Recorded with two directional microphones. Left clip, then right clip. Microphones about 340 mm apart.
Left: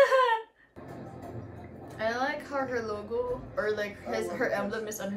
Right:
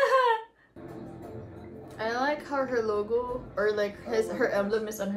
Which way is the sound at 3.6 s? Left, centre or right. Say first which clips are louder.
Right 5 dB; centre.